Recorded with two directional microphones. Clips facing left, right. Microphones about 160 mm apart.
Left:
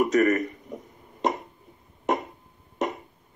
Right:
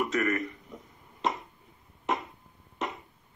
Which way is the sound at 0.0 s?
40° left (ahead or behind).